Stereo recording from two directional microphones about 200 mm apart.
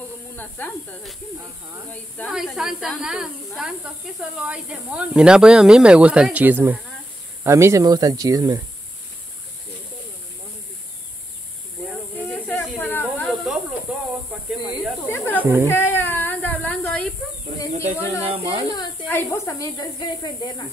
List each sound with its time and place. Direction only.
0.4 s a woman's voice: 10° left (ahead or behind)
2.1 s speech: centre (ahead or behind); by 8.5 s 20° right (ahead or behind)
12.2 s snake: 10° left (ahead or behind)
15.0 s a woman's voice: 10° left (ahead or behind)
15.6 s a sound: 10° left (ahead or behind)
18.2 s speech: 30° right (ahead or behind)
18.7 s a sound: 20° left (ahead or behind)
19.0 s a woman's voice: 10° left (ahead or behind)